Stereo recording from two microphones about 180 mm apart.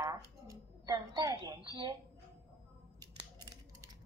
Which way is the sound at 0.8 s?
20° right (ahead or behind).